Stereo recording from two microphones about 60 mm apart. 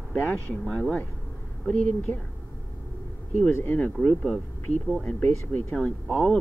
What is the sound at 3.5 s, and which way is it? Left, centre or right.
Speech, left.